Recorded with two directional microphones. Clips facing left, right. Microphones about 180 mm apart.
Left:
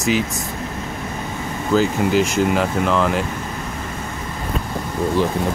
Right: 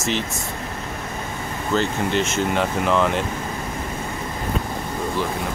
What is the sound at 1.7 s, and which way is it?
Speech, 5° left (ahead or behind).